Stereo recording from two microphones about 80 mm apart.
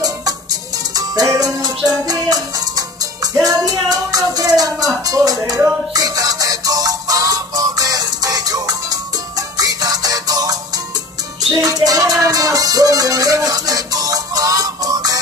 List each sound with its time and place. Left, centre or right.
0.9 s music: right
11.5 s music: right